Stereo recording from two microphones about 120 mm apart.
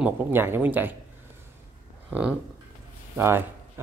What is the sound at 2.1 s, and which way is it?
Speech, 10° right (ahead or behind).